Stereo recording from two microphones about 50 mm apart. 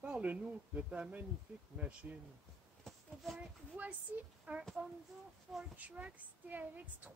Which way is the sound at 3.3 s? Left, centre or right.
Right.